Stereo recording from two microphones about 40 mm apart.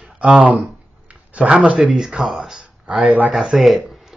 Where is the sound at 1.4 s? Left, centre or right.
Right.